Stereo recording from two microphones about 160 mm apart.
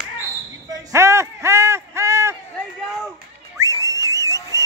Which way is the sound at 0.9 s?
15° right (ahead or behind).